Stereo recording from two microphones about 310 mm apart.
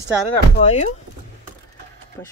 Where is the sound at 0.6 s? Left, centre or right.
Left.